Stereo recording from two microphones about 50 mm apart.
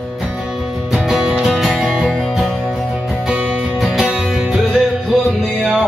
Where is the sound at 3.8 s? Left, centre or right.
Centre.